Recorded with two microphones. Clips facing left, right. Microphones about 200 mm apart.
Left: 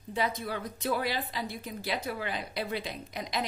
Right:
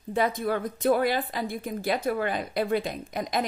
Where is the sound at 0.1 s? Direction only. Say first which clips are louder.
Right 6 dB; 50° right (ahead or behind).